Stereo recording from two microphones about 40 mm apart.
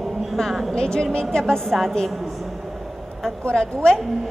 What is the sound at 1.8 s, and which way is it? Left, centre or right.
Speech, centre.